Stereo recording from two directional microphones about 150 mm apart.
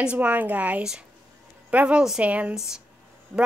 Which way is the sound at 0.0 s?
10° right (ahead or behind).